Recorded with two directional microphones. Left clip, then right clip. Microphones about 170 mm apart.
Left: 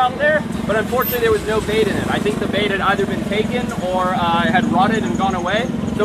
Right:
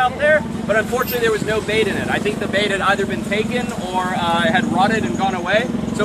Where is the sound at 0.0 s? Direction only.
10° right (ahead or behind).